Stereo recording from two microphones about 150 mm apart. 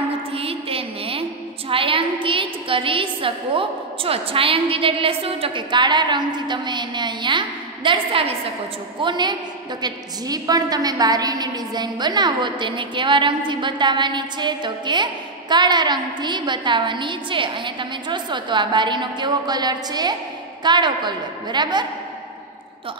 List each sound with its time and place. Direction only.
0.3 s music: 40° right (ahead or behind)
1.7 s a woman's voice: 35° right (ahead or behind)